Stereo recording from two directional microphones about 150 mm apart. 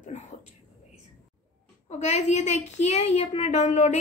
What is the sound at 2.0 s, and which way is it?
A woman's voice, 50° left (ahead or behind).